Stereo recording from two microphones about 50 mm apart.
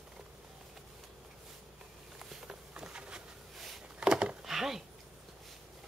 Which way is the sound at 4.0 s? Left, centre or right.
Centre.